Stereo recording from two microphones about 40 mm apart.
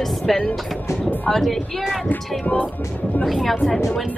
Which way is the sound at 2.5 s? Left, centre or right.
Left.